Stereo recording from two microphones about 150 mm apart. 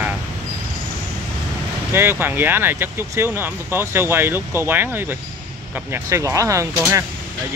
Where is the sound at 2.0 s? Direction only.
15° right (ahead or behind).